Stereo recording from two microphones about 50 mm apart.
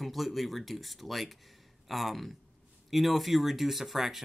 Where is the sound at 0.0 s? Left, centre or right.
Centre.